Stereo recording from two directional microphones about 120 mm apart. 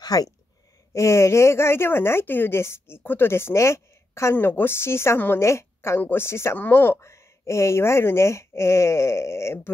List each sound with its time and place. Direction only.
0.0 s speech: 35° left (ahead or behind)